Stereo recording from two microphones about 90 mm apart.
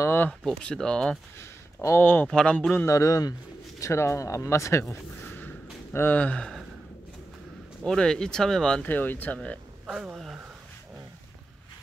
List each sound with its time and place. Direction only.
0.0 s a sound: 25° left (ahead or behind)
0.5 s speech: 10° left (ahead or behind)
1.4 s a sound: 30° left (ahead or behind)
2.2 s speech: 10° left (ahead or behind)
2.9 s speech: 40° left (ahead or behind)
5.2 s a sound: 20° left (ahead or behind)
5.9 s speech: 20° left (ahead or behind)
7.8 s speech: 5° left (ahead or behind)
8.8 s speech: 20° left (ahead or behind)
10.1 s speech: 5° right (ahead or behind)